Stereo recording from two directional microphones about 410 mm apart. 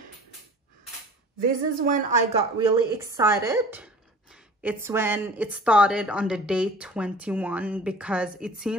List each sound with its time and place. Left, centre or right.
1.4 s a woman's voice: centre
2.7 s a woman's voice: centre